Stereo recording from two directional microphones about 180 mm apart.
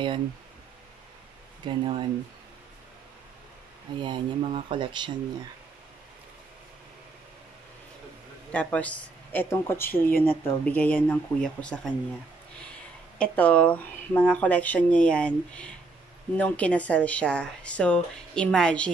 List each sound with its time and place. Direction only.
1.7 s speech: 25° right (ahead or behind)
4.0 s speech: 30° right (ahead or behind)
8.5 s speech: 5° left (ahead or behind)
13.2 s speech: 10° left (ahead or behind)